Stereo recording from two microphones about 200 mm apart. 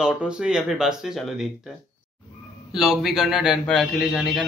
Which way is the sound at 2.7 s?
Centre (ahead or behind).